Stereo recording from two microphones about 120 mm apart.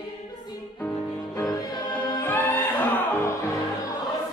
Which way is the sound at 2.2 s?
15° left (ahead or behind).